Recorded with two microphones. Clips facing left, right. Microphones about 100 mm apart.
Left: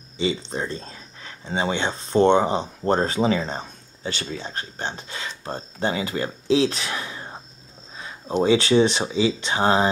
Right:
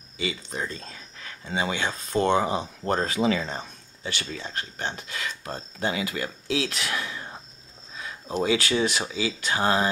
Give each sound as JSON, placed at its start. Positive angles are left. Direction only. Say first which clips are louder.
{"t": 0.2, "sound": "speech", "louder": "left 6 dB", "side_deg": 25}